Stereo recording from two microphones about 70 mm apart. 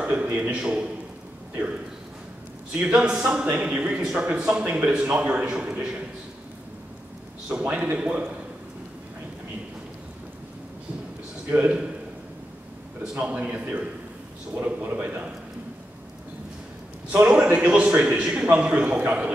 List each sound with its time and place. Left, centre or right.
0.0 s a man's voice: centre
2.7 s a man's voice: centre
7.4 s a man's voice: centre
11.5 s a man's voice: centre
13.0 s a man's voice: centre
17.1 s a man's voice: centre